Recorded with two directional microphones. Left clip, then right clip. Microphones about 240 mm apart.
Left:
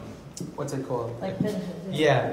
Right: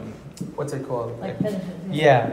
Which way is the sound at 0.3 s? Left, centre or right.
Left.